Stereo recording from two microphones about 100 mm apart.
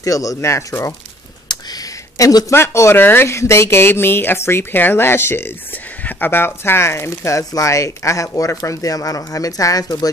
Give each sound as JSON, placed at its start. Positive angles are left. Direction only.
{"t": 0.0, "sound": "speech", "side_deg": 35}
{"t": 1.7, "sound": "a sound", "side_deg": 35}
{"t": 2.5, "sound": "speech", "side_deg": 25}